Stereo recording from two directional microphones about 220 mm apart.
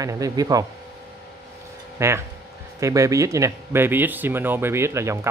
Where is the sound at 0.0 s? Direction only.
15° right (ahead or behind).